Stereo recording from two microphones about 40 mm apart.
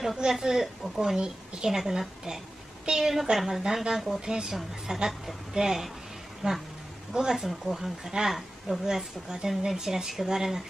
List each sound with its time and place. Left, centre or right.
0.3 s a woman's voice: centre
1.7 s a woman's voice: centre
4.3 s a woman's voice: right